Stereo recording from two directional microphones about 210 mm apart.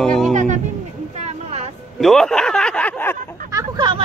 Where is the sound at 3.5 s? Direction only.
20° right (ahead or behind).